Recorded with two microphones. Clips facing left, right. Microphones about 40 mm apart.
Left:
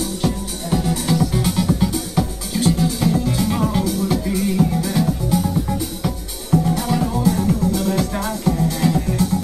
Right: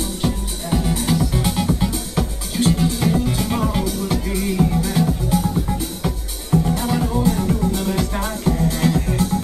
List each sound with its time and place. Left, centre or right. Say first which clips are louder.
0.0 s music: left 1 dB; centre